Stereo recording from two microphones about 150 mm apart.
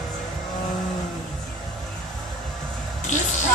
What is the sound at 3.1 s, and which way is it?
Speech, 55° left (ahead or behind).